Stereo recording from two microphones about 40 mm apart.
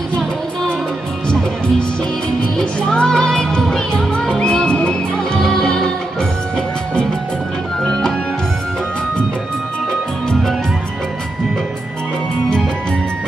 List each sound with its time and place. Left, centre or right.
1.3 s music: centre
7.8 s music: centre